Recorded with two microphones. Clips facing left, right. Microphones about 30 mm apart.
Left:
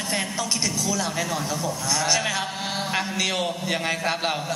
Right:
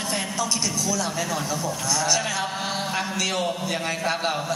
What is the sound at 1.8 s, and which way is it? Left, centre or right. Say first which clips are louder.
A man's voice: left 1 dB; centre.